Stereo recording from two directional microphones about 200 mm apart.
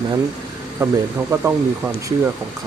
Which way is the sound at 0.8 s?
10° right (ahead or behind).